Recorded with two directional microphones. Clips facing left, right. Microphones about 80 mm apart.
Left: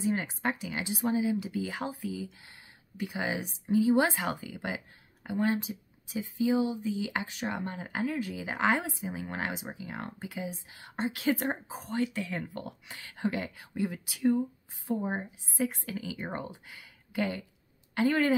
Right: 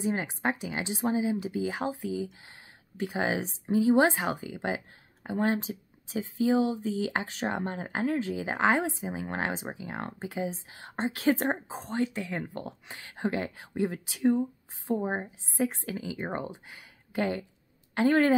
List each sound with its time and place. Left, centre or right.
0.0 s a woman's voice: right